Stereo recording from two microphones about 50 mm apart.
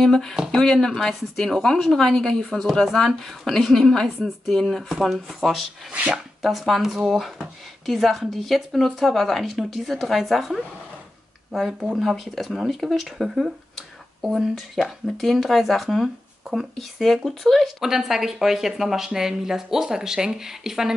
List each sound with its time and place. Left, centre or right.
0.0 s a woman's voice: centre
5.9 s speech: right
6.1 s speech: centre
12.0 s speech: centre
15.0 s speech: centre